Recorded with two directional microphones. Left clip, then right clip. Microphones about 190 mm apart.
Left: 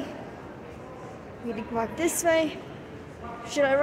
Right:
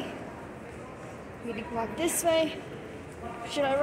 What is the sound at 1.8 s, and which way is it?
Speech, 35° left (ahead or behind).